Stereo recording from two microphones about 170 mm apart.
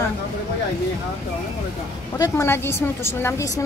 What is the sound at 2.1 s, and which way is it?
A woman's voice, 20° left (ahead or behind).